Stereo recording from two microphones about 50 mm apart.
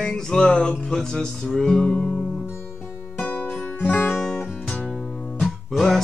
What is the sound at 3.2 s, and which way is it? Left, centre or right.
Music, left.